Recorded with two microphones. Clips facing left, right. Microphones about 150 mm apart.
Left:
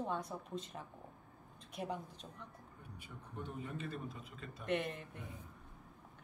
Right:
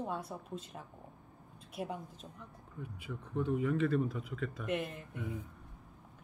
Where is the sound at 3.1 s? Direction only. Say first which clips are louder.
Right 13 dB; 90° right.